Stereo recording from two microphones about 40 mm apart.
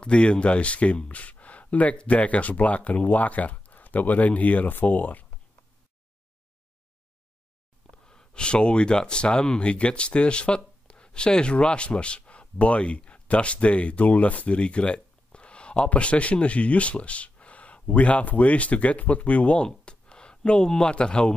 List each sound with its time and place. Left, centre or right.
0.0 s speech: left
8.1 s speech: centre